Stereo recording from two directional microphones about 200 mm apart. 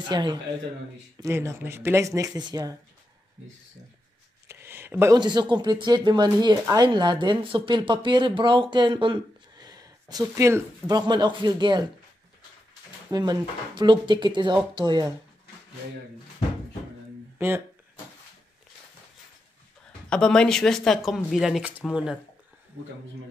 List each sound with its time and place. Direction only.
0.1 s speech: 20° right (ahead or behind)
4.5 s speech: 10° right (ahead or behind)
13.1 s speech: 20° right (ahead or behind)
20.1 s speech: 5° left (ahead or behind)